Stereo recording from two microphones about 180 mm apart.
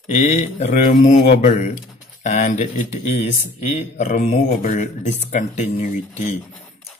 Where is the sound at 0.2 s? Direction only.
40° left (ahead or behind).